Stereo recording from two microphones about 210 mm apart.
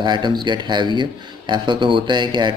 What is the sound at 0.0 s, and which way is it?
Speech, 20° right (ahead or behind).